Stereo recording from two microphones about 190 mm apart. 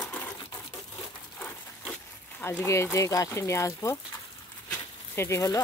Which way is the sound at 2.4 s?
15° left (ahead or behind).